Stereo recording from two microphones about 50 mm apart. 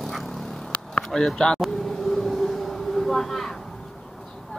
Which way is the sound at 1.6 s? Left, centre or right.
Centre.